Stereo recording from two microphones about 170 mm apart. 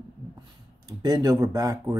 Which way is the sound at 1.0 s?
20° right (ahead or behind).